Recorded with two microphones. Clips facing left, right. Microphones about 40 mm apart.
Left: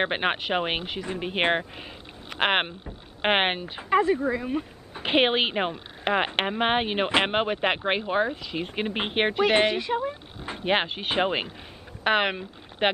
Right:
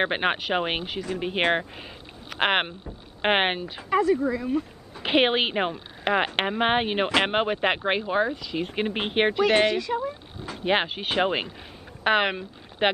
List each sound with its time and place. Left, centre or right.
0.0 s speech: centre
2.2 s speech: centre; by 4.6 s left
5.0 s speech: centre
9.4 s speech: centre
10.0 s a sound: left
10.6 s speech: centre